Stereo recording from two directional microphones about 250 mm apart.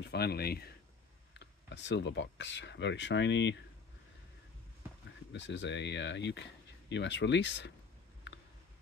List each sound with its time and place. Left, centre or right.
0.0 s speech: left
5.3 s speech: left